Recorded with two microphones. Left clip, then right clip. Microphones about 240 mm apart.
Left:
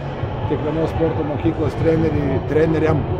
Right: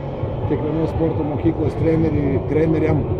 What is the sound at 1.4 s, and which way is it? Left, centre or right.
A man's voice, centre.